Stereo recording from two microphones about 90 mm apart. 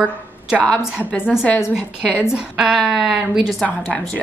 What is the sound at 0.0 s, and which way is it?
A woman's voice, 15° right (ahead or behind).